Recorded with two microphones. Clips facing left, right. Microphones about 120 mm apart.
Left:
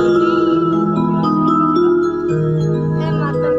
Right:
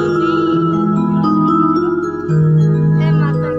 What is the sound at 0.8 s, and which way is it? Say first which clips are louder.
Music: right 1 dB; 10° left (ahead or behind).